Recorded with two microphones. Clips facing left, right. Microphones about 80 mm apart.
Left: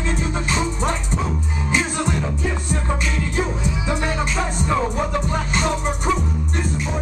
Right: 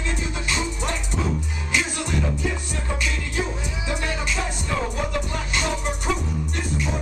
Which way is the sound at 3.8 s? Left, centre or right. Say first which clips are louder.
Left 3 dB; left.